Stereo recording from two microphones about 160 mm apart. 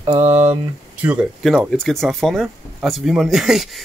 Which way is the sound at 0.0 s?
35° right (ahead or behind).